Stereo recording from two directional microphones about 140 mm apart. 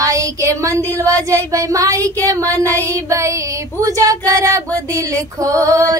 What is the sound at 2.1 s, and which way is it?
Child singing, 25° right (ahead or behind).